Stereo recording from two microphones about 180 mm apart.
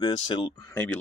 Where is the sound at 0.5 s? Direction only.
10° left (ahead or behind).